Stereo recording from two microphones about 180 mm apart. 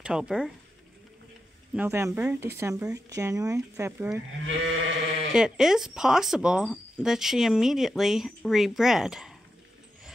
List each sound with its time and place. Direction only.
0.0 s speech: 5° right (ahead or behind)
1.8 s speech: 15° right (ahead or behind)
4.5 s sheep: 90° right
5.3 s speech: 5° right (ahead or behind)